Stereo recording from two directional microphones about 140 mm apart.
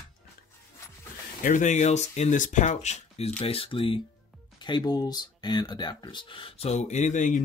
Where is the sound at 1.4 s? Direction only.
65° left (ahead or behind).